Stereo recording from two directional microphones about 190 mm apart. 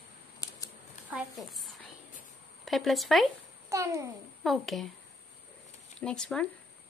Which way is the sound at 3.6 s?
15° right (ahead or behind).